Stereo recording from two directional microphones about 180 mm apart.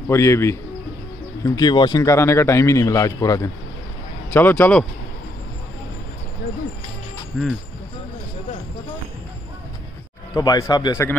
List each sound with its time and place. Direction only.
0.1 s a man's voice: 15° left (ahead or behind)
7.3 s speech: centre (ahead or behind)
10.3 s a man's voice: 20° left (ahead or behind)